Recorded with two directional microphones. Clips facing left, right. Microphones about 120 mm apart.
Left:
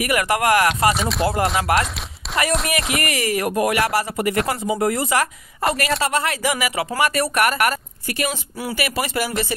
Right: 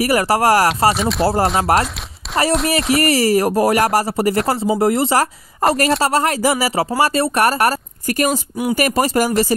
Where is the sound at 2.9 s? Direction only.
35° right (ahead or behind).